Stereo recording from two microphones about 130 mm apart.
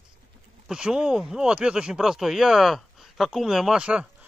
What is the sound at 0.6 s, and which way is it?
Speech, 5° right (ahead or behind).